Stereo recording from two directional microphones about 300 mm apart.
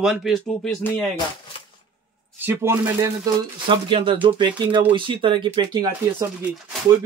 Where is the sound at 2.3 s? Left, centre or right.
Centre.